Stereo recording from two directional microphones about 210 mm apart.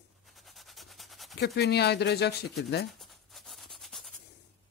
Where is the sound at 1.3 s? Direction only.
50° left (ahead or behind).